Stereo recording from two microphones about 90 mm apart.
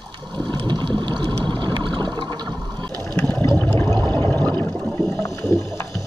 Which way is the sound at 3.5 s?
25° left (ahead or behind).